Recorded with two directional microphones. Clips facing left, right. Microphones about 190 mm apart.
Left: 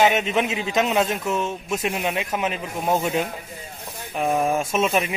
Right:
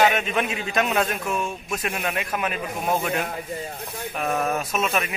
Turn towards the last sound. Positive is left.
turn(degrees=30)  # may be behind; listen again after turning